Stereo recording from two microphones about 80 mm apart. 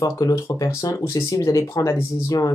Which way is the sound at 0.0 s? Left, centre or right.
Left.